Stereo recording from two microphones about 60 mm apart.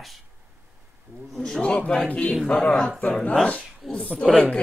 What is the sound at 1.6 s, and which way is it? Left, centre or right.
A man's voice, centre.